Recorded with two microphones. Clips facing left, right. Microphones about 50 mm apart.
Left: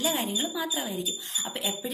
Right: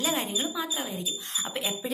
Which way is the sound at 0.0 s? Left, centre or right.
Right.